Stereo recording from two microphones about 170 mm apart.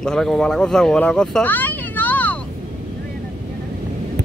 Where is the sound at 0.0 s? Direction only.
5° left (ahead or behind).